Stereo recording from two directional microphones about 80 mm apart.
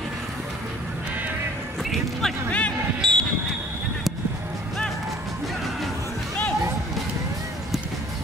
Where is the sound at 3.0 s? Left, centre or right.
Centre.